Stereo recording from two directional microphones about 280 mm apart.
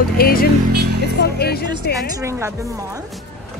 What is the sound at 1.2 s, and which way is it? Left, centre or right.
Speech, left.